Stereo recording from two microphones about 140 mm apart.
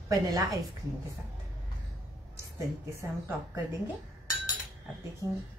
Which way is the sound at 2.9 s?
20° right (ahead or behind).